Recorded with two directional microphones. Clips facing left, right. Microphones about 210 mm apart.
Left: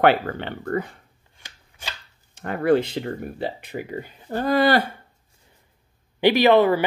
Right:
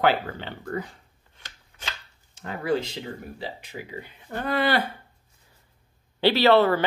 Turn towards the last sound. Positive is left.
turn(degrees=15)  # may be behind; listen again after turning